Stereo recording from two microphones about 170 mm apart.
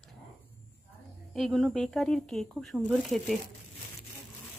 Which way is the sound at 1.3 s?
Centre (ahead or behind).